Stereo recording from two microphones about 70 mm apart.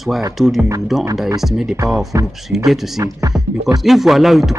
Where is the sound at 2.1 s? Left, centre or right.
Right.